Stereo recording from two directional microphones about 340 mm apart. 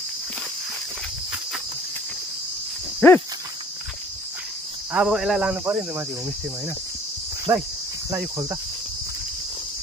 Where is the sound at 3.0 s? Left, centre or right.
Centre.